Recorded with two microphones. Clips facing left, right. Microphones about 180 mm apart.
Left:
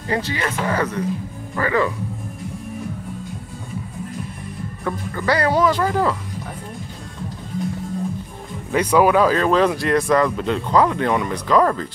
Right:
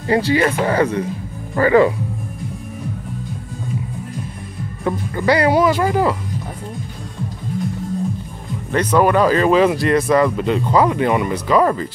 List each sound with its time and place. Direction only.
0.1 s speech: 30° right (ahead or behind)
4.8 s speech: 15° right (ahead or behind)
8.7 s speech: 5° left (ahead or behind)